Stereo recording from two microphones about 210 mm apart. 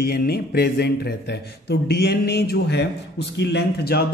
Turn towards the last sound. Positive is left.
turn(degrees=50)  # may be behind; listen again after turning